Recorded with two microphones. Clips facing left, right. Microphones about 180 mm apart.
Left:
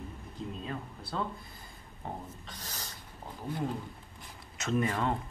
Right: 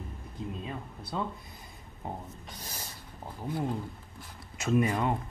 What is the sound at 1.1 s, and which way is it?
Speech, 5° right (ahead or behind).